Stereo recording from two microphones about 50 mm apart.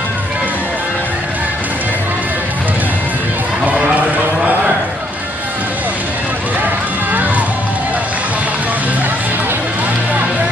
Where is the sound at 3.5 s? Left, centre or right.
Right.